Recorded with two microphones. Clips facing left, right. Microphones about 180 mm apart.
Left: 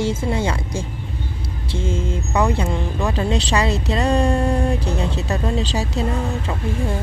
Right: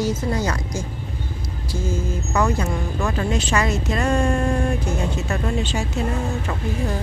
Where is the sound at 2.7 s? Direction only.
15° left (ahead or behind).